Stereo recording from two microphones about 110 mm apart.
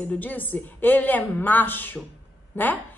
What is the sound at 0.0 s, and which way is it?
A woman's voice, 15° left (ahead or behind).